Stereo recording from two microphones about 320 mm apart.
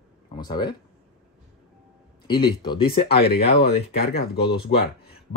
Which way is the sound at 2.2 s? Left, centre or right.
Centre.